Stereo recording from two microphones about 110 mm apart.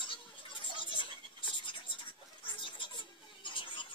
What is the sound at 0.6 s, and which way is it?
Scratch, 50° left (ahead or behind).